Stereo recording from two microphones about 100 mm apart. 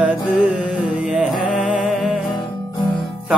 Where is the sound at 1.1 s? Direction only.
5° right (ahead or behind).